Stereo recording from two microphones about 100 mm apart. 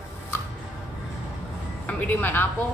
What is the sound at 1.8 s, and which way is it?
Speech, 15° left (ahead or behind).